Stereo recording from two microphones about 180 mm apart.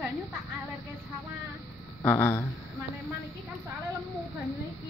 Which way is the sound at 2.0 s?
15° left (ahead or behind).